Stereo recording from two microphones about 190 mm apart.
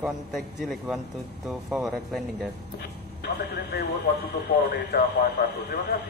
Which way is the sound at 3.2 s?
60° left (ahead or behind).